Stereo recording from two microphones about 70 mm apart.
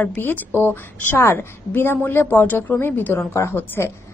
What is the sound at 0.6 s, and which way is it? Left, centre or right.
A woman's voice, left.